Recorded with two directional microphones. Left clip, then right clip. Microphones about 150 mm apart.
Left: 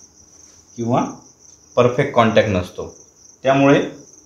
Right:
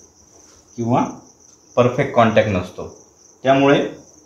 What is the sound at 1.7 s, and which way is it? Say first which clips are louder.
Speech: even; 35° left (ahead or behind).